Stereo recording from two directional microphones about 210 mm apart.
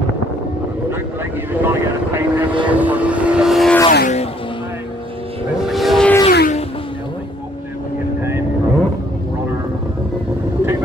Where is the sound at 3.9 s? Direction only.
45° left (ahead or behind).